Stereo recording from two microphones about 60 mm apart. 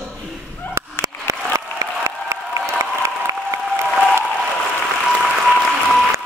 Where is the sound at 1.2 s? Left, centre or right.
Right.